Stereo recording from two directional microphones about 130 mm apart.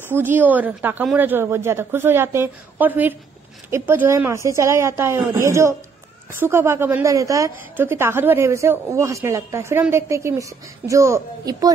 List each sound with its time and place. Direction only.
0.1 s a woman's voice: 15° right (ahead or behind)